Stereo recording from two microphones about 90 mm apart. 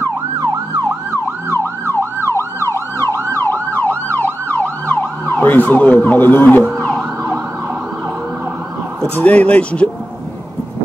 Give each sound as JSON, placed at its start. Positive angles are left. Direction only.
{"t": 1.5, "sound": "emergency vehicle", "side_deg": 25}
{"t": 4.5, "sound": "emergency vehicle", "side_deg": 20}
{"t": 9.2, "sound": "speech", "side_deg": 15}